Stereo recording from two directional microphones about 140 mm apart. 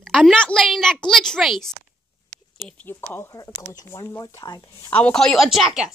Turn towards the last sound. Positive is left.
turn(degrees=0)  # may be behind; listen again after turning